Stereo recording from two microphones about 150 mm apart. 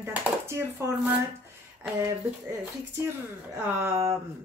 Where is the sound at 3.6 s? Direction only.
15° right (ahead or behind).